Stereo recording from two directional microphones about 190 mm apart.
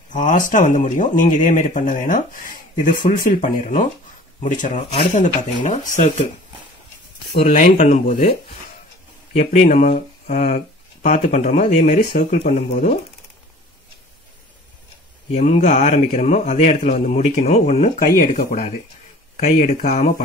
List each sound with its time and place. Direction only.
0.1 s a man's voice: 45° left (ahead or behind)
7.4 s a man's voice: 40° left (ahead or behind)
9.4 s a man's voice: 35° left (ahead or behind)
15.3 s a man's voice: 40° left (ahead or behind)
19.3 s speech: 45° left (ahead or behind)